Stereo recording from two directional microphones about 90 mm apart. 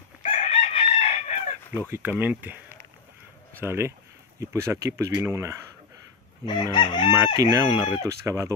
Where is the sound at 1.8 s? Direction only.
25° right (ahead or behind).